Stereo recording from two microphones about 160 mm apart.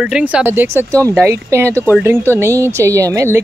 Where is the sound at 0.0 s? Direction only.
5° right (ahead or behind).